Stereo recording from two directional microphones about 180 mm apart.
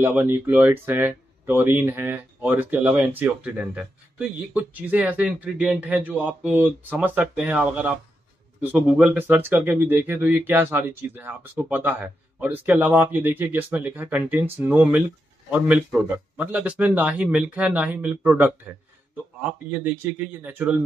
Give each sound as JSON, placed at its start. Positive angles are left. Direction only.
{"t": 0.0, "sound": "speech", "side_deg": -10}